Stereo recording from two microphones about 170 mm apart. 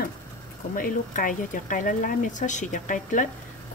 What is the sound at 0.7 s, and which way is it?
Speech, 55° left (ahead or behind).